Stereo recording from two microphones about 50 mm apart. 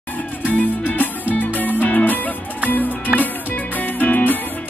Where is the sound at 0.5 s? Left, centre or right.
Left.